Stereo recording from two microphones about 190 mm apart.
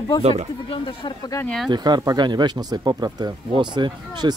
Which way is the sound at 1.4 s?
5° left (ahead or behind).